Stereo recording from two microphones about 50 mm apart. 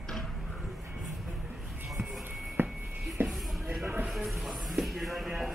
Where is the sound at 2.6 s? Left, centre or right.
Right.